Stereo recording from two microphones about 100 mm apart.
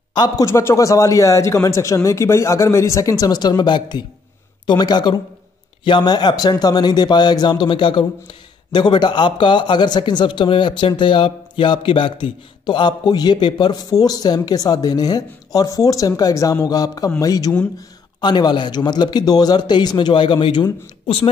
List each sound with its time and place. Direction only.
0.1 s speech: 45° left (ahead or behind)
0.5 s a man's voice: 25° left (ahead or behind); by 20.6 s 55° left (ahead or behind)